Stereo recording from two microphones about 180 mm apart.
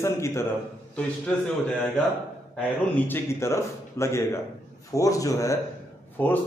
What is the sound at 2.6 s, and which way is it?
A man's voice, 10° left (ahead or behind).